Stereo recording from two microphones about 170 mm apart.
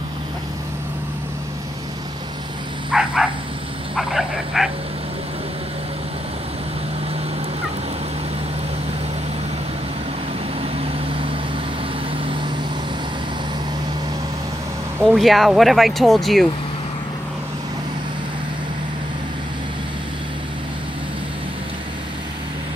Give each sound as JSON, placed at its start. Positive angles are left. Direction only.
{"t": 2.9, "sound": "a sound", "side_deg": -5}
{"t": 3.9, "sound": "speech", "side_deg": 0}
{"t": 10.8, "sound": "vehicle", "side_deg": -30}
{"t": 15.0, "sound": "speech", "side_deg": 0}